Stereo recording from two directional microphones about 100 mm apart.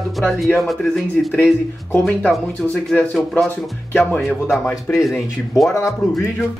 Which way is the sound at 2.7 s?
10° left (ahead or behind).